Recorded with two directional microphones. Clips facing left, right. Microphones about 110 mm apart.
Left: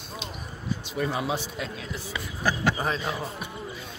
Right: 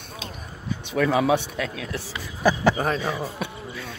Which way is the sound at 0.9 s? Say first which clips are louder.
Right 9 dB; 80° right.